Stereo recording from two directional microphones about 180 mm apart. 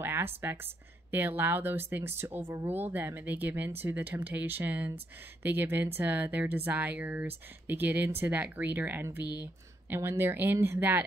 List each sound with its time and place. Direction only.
0.0 s speech: 10° right (ahead or behind)
9.2 s speech: 20° left (ahead or behind)
9.8 s speech: 15° right (ahead or behind)